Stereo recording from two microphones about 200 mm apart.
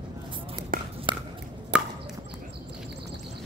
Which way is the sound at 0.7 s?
45° right (ahead or behind).